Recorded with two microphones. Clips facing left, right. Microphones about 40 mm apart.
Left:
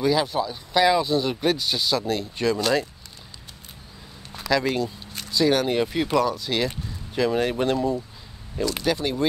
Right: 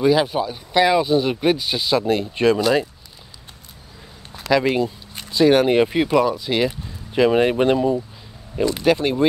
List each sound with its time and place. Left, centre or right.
0.0 s speech: right
2.6 s speech: centre
4.5 s speech: centre
6.1 s speech: centre
7.2 s speech: right